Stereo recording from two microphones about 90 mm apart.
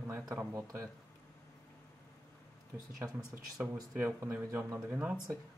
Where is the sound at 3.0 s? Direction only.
25° right (ahead or behind).